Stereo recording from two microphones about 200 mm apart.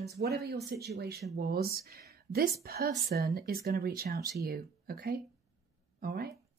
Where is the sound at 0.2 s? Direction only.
45° right (ahead or behind).